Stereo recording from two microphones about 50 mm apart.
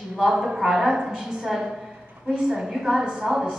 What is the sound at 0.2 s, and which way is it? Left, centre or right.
A woman's voice, centre.